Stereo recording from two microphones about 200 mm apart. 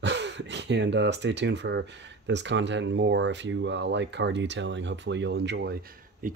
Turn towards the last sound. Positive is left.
turn(degrees=-50)  # may be behind; listen again after turning